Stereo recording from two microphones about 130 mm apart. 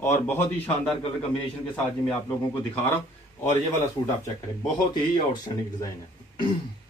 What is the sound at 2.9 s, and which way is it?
Speech, 20° left (ahead or behind).